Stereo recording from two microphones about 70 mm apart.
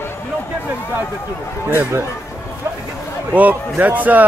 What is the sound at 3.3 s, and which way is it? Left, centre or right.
Speech, right.